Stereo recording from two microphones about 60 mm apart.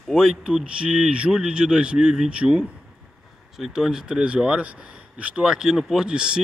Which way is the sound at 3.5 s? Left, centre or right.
Centre.